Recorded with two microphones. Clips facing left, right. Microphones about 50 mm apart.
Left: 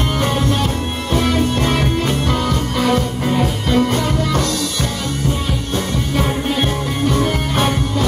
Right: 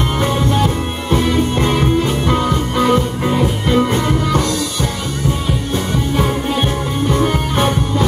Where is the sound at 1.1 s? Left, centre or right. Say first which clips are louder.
Right 1 dB; centre.